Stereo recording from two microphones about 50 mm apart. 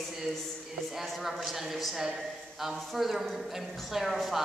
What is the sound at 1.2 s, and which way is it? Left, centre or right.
Speech, centre.